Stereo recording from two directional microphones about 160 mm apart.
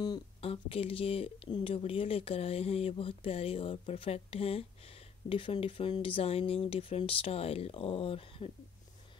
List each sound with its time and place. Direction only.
0.0 s speech: 30° left (ahead or behind)